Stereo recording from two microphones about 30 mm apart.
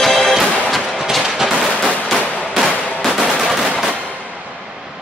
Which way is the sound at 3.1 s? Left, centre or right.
Centre.